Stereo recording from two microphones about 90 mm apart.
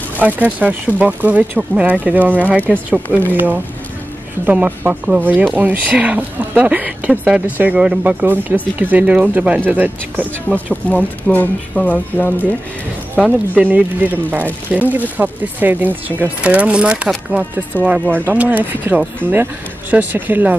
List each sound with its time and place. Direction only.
0.2 s speech: 15° right (ahead or behind)
1.6 s speech: 5° right (ahead or behind)
1.9 s speech: 15° right (ahead or behind)
7.1 s speech: 5° right (ahead or behind)
7.5 s speech: 15° right (ahead or behind)
10.5 s speech: 15° left (ahead or behind)
13.6 s speech: 15° right (ahead or behind)